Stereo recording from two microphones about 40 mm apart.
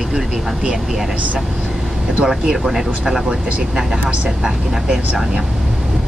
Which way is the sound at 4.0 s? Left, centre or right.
Right.